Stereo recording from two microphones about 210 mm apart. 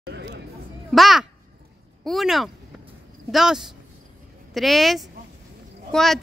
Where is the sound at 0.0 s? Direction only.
55° right (ahead or behind).